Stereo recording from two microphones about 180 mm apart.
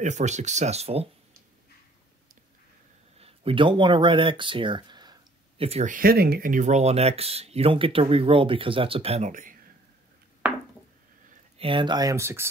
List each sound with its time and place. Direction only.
0.0 s speech: 40° right (ahead or behind)
3.2 s speech: 30° right (ahead or behind)
5.9 s speech: 60° right (ahead or behind)
11.5 s speech: 30° right (ahead or behind); by 12.4 s 15° right (ahead or behind)